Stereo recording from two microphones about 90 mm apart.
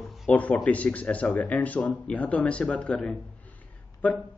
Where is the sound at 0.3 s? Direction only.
15° left (ahead or behind).